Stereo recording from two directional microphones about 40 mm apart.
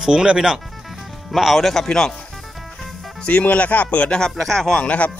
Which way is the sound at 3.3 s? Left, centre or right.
Left.